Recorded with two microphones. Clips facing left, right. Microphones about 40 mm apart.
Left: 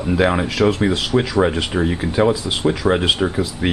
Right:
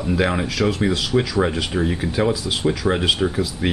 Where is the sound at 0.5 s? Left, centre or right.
Left.